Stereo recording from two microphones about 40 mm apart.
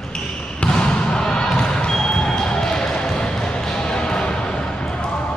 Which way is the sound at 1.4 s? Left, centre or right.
Centre.